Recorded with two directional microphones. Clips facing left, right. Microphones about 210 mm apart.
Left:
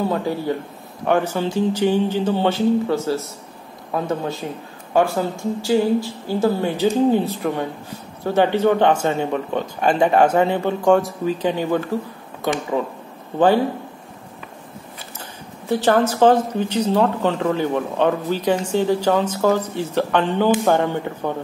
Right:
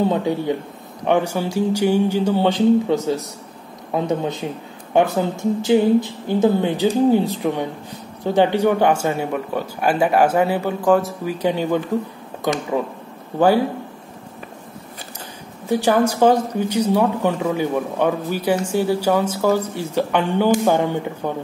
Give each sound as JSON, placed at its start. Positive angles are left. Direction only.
{"t": 0.1, "sound": "a woman's voice", "side_deg": -20}
{"t": 12.7, "sound": "speech", "side_deg": -15}
{"t": 15.7, "sound": "speech", "side_deg": -10}